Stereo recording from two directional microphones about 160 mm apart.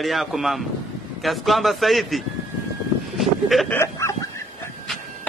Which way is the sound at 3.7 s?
15° left (ahead or behind).